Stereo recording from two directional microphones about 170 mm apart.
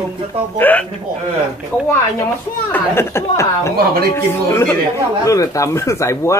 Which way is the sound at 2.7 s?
10° left (ahead or behind).